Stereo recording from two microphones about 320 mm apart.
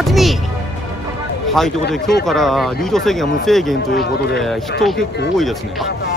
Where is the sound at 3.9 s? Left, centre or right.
Left.